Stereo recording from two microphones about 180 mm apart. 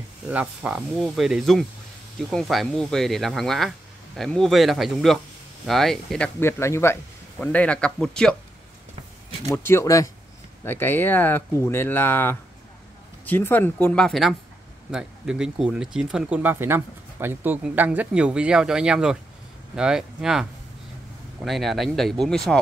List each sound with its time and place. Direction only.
0.3 s speech: 10° right (ahead or behind)
9.5 s speech: 15° left (ahead or behind); by 20.4 s 5° right (ahead or behind)
21.5 s speech: centre (ahead or behind)